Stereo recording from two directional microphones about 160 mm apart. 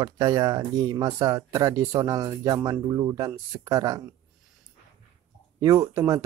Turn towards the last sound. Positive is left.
turn(degrees=-20)  # may be behind; listen again after turning